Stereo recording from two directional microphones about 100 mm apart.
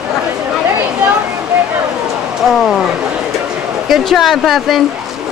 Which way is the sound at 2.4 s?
Centre (ahead or behind).